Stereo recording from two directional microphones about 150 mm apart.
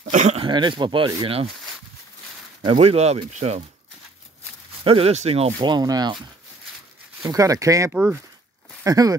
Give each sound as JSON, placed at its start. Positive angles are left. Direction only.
{"t": 0.0, "sound": "speech", "side_deg": -55}
{"t": 0.4, "sound": "speech", "side_deg": -30}
{"t": 2.6, "sound": "speech", "side_deg": -40}
{"t": 4.8, "sound": "speech", "side_deg": -40}
{"t": 7.2, "sound": "speech", "side_deg": -20}
{"t": 7.9, "sound": "speech", "side_deg": -10}
{"t": 8.8, "sound": "speech", "side_deg": -25}